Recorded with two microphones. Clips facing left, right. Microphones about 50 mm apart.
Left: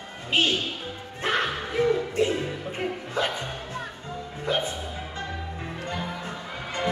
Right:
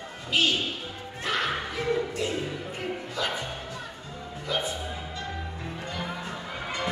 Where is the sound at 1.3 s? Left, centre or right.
Left.